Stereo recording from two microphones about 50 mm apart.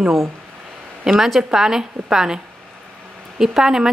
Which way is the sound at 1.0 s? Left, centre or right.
Centre.